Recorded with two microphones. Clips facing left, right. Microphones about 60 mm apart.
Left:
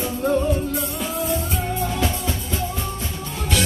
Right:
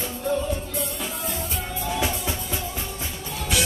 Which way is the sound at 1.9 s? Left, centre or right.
Centre.